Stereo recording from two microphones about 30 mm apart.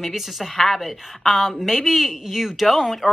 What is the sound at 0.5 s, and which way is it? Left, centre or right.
Speech, centre.